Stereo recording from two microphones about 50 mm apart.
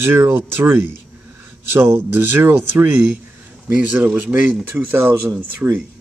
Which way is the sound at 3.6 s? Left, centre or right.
Right.